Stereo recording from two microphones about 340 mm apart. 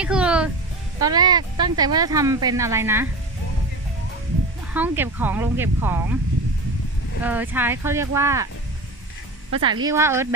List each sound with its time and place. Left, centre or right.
0.0 s music: centre
0.9 s speech: centre
4.7 s speech: centre
7.2 s speech: centre
9.6 s speech: centre